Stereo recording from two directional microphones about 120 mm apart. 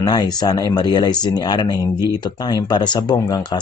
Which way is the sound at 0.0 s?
35° left (ahead or behind).